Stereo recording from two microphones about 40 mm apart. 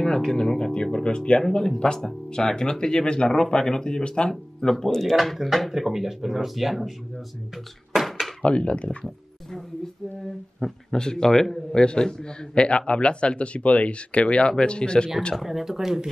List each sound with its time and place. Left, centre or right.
0.0 s a man's voice: centre
2.0 s speech: centre
5.7 s speech: centre
7.9 s a sound: centre
8.4 s a man's voice: left
10.9 s speech: centre
11.7 s a man's voice: left
15.3 s speech: centre